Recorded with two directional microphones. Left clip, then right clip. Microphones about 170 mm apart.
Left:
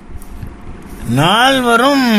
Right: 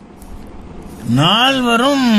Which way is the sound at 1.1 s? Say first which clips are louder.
Left 2 dB; 20° left (ahead or behind).